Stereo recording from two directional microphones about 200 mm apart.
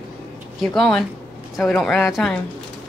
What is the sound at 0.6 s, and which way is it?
Speech, centre (ahead or behind).